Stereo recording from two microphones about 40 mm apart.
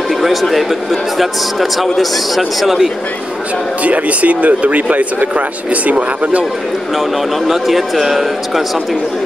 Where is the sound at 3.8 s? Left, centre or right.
Right.